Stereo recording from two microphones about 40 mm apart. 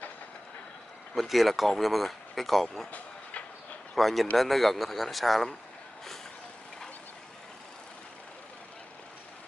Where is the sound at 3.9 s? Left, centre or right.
Centre.